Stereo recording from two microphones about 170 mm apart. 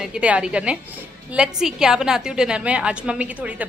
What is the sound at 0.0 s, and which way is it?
A woman's voice, 5° right (ahead or behind).